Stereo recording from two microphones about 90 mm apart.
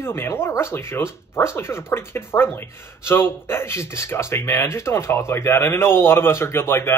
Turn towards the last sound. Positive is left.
turn(degrees=25)  # may be behind; listen again after turning